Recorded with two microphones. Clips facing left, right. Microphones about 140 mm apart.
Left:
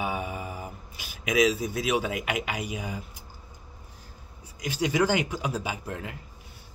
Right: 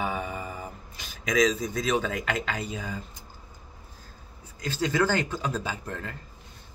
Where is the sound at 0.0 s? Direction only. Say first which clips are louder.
Even; 5° left (ahead or behind).